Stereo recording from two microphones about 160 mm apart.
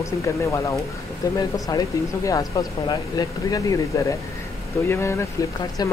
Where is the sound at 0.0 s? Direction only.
20° left (ahead or behind).